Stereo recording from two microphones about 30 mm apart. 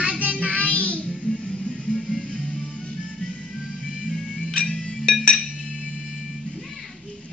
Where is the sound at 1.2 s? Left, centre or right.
Left.